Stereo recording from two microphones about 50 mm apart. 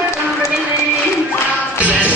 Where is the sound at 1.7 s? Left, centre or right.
Right.